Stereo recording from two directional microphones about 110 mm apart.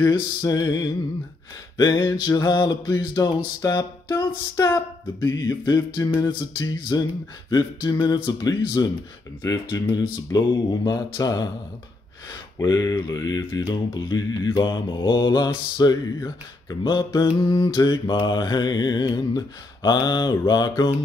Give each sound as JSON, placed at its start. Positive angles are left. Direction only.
{"t": 0.0, "sound": "speech", "side_deg": 35}
{"t": 3.6, "sound": "music", "side_deg": 35}
{"t": 4.6, "sound": "speech", "side_deg": 30}